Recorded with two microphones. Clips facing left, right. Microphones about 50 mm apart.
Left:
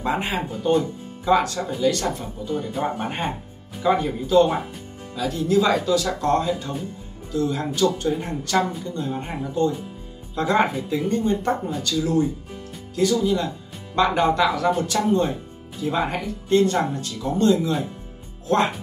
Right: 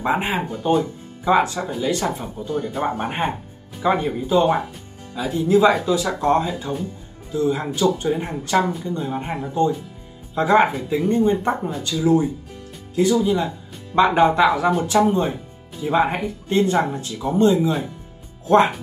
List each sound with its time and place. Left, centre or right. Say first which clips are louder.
0.0 s speech: right 3 dB; centre